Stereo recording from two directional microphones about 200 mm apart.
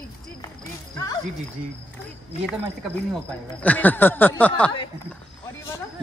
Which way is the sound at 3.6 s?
10° left (ahead or behind).